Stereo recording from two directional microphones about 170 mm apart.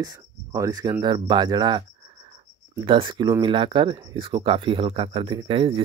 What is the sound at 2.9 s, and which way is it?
Speech, 30° right (ahead or behind).